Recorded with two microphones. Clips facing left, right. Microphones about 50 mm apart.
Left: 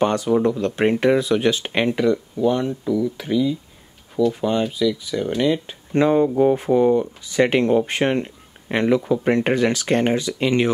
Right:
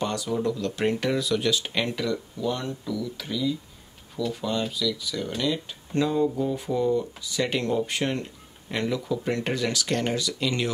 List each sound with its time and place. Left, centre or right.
0.0 s speech: left
6.0 s speech: left